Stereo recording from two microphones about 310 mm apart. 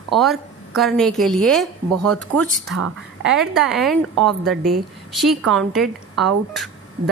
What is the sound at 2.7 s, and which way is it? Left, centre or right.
Speech, right.